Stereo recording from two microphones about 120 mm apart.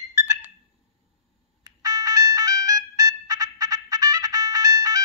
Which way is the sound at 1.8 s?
30° right (ahead or behind).